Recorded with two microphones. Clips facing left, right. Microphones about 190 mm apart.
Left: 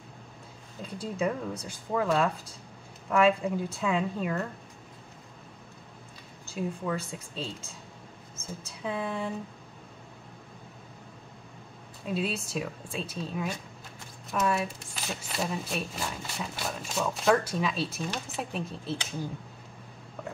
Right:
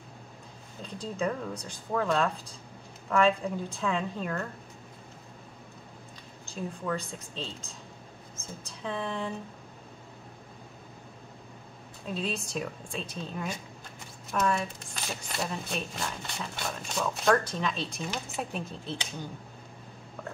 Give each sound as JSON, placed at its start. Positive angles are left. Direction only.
{"t": 0.8, "sound": "speech", "side_deg": 10}
{"t": 6.4, "sound": "speech", "side_deg": 5}
{"t": 8.8, "sound": "speech", "side_deg": 5}
{"t": 12.1, "sound": "speech", "side_deg": 5}